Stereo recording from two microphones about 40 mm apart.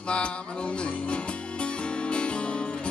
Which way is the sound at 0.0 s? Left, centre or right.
Left.